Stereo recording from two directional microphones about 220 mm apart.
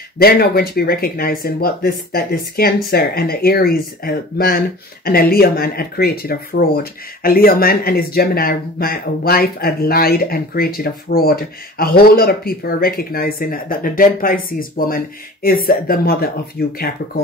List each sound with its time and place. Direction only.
0.2 s speech: 45° left (ahead or behind)